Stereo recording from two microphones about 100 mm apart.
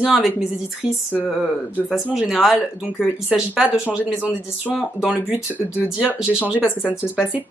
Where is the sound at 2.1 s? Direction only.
Centre (ahead or behind).